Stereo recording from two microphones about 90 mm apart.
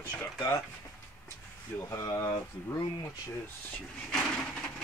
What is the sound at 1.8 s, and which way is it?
Speech, 35° left (ahead or behind).